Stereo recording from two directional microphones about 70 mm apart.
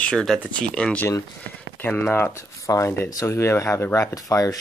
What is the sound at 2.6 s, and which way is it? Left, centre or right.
Speech, left.